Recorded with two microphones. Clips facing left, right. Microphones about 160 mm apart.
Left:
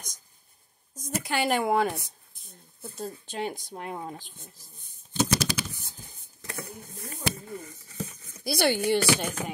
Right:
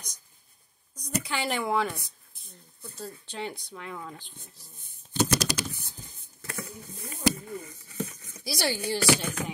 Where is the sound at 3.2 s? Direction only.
50° left (ahead or behind).